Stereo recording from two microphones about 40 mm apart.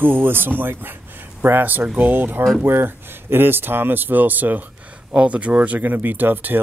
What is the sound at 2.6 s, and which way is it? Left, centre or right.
Speech, right.